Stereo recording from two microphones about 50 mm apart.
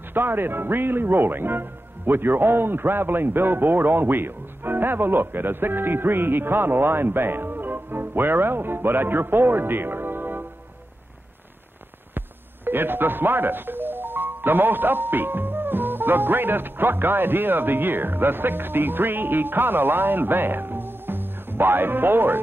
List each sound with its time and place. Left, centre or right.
0.1 s speech: right
12.6 s speech: right